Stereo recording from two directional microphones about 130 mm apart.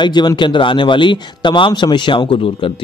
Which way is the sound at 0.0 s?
35° left (ahead or behind).